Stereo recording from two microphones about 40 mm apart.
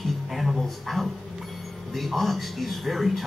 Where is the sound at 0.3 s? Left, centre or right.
Centre.